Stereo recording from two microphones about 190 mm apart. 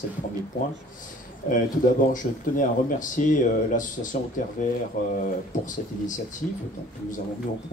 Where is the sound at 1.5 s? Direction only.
45° left (ahead or behind).